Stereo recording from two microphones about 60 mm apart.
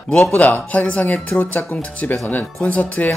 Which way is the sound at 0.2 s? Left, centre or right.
Left.